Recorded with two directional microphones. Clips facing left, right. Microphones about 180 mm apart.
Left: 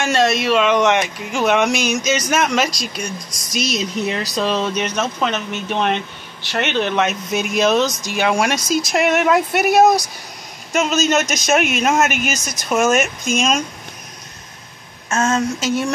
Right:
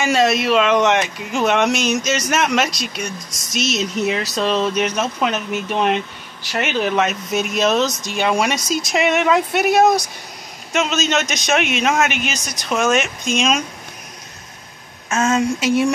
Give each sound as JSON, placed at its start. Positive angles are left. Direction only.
{"t": 0.0, "sound": "speech", "side_deg": -5}
{"t": 15.1, "sound": "speech", "side_deg": -5}